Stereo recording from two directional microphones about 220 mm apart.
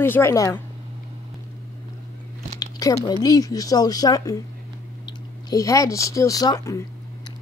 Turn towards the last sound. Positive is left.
turn(degrees=15)  # may be behind; listen again after turning